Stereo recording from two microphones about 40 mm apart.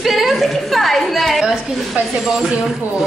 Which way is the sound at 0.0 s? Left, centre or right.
Centre.